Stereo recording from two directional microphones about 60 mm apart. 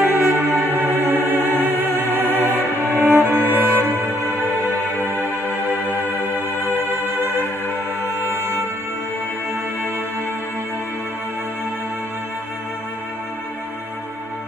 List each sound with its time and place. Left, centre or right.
0.0 s music: right
7.1 s music: right